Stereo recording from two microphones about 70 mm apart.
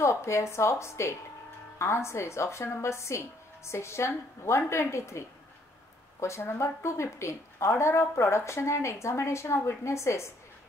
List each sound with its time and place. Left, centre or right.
0.0 s speech: left
6.2 s speech: left